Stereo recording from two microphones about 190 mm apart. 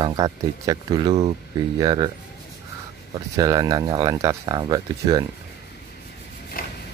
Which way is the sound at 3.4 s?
20° right (ahead or behind).